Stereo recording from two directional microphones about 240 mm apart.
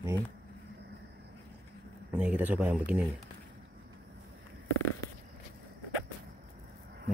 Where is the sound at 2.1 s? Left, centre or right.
Centre.